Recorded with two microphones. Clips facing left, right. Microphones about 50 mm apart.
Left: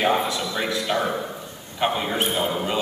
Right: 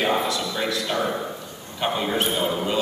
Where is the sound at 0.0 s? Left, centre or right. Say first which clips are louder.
Left 1 dB; centre.